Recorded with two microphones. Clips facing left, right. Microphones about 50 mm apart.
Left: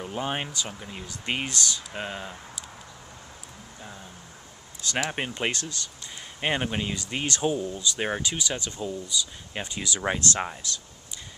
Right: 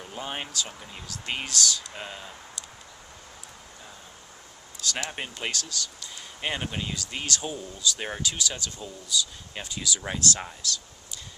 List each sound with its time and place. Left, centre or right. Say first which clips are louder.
0.0 s speech: left 5 dB; centre
5.1 s speech: left 4 dB; left